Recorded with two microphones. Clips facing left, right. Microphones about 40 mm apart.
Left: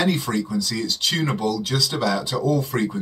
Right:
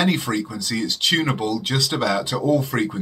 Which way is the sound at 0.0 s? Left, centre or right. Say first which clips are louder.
Right 1 dB; right.